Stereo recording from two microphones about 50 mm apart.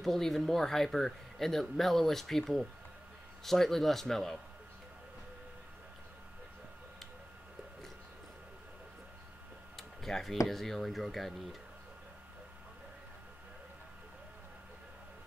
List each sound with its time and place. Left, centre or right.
0.0 s speech: centre
9.8 s tick-tock: centre
10.5 s speech: centre